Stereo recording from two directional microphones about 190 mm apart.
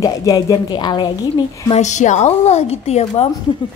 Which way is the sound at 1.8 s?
40° left (ahead or behind).